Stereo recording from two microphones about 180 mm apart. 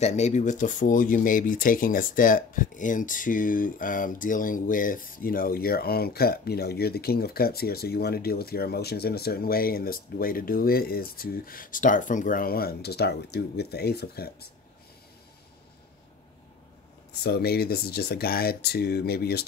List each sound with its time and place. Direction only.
0.0 s speech: 40° left (ahead or behind); by 14.5 s 60° left (ahead or behind)
17.1 s speech: 60° left (ahead or behind)